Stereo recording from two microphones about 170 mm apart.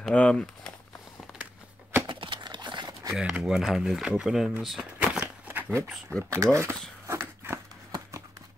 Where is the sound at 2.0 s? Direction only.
30° right (ahead or behind).